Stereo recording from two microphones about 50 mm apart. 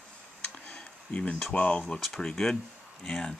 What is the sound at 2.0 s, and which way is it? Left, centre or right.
Speech, centre.